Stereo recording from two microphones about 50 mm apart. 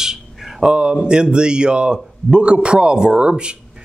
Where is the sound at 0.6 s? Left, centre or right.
Centre.